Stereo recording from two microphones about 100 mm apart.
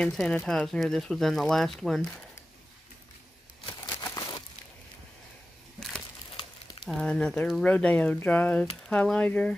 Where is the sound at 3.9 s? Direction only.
30° left (ahead or behind).